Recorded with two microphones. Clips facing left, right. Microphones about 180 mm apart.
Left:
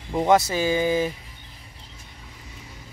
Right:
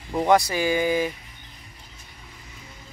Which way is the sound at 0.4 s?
15° right (ahead or behind).